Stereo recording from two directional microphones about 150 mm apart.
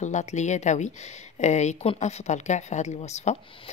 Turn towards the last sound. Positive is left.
turn(degrees=40)  # may be behind; listen again after turning